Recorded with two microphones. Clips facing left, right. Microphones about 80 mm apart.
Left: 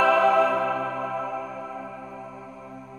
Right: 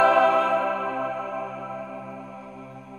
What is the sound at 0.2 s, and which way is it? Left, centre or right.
Music, centre.